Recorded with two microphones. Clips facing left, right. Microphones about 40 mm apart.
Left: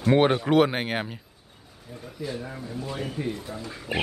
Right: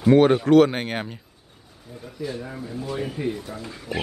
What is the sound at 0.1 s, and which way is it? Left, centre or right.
Speech, centre.